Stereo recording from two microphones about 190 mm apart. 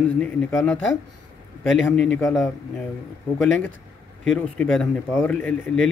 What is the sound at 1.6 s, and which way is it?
Speech, 5° left (ahead or behind).